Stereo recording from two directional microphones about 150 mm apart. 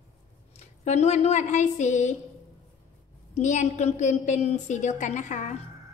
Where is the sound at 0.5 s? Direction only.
50° left (ahead or behind).